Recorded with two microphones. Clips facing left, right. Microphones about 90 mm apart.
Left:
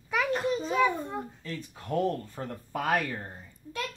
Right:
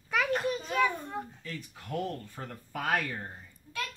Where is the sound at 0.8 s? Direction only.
10° left (ahead or behind).